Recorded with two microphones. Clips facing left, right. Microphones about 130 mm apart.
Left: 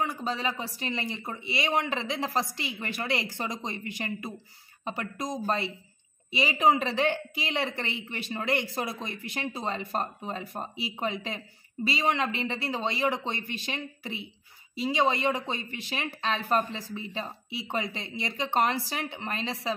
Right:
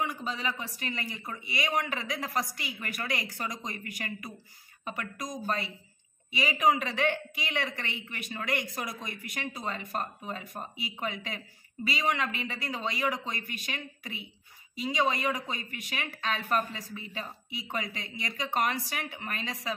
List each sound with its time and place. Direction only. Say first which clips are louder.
0.0 s a woman's voice: left 3 dB; 35° left (ahead or behind)